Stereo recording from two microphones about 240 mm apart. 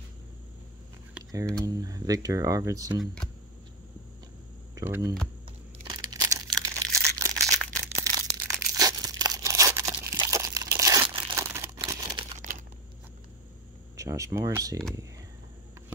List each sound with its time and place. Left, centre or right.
1.1 s speech: centre
4.7 s speech: centre
5.9 s a sound: centre
7.7 s tearing: centre
11.8 s crumpling: centre
12.4 s a sound: right
13.9 s speech: centre